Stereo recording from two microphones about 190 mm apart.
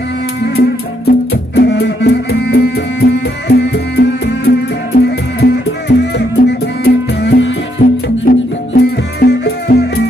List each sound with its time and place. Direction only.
0.6 s music: 60° left (ahead or behind)
8.3 s music: 45° left (ahead or behind)
9.2 s music: 60° left (ahead or behind)